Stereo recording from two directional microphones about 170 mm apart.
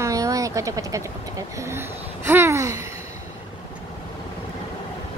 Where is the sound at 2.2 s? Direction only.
15° right (ahead or behind).